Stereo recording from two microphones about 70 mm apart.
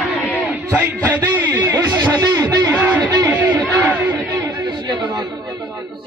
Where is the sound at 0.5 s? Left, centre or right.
Right.